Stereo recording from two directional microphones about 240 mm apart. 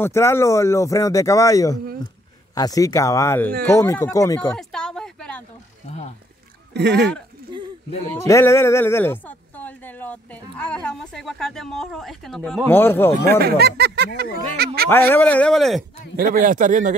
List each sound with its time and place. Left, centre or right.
0.0 s speech: centre
4.5 s a sound: centre
6.7 s speech: right
8.3 s speech: centre
13.4 s speech: right
14.9 s speech: centre
16.2 s speech: right